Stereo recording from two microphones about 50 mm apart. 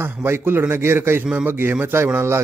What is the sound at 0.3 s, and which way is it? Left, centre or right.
A man's voice, right.